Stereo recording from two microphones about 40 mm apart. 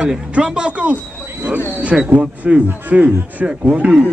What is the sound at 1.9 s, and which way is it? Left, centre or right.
Speech, centre.